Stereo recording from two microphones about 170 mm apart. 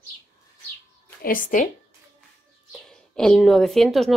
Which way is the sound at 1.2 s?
55° left (ahead or behind).